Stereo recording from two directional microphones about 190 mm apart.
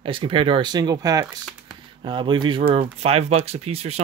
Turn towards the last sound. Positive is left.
turn(degrees=-35)  # may be behind; listen again after turning